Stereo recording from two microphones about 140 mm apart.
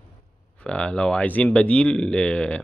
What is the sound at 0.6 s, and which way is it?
Speech, 10° left (ahead or behind).